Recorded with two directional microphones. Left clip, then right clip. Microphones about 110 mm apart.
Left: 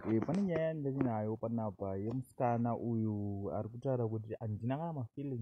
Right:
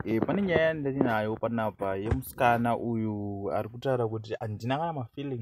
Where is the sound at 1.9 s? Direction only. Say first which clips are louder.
Right 9 dB; 20° left (ahead or behind).